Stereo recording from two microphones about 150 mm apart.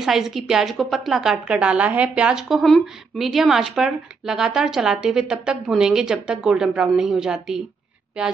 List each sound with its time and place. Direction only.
0.0 s a woman's voice: centre (ahead or behind)